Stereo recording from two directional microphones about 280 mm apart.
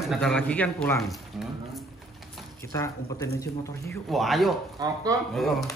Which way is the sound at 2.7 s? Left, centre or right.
Centre.